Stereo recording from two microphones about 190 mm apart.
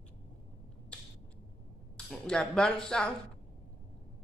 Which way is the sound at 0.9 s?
5° left (ahead or behind).